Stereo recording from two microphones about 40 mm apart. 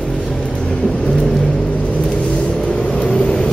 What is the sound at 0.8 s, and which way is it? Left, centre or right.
Vehicle, centre.